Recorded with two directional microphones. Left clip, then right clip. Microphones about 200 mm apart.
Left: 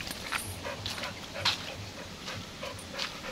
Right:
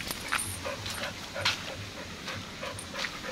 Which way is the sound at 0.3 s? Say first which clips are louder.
Right 4 dB; 20° right (ahead or behind).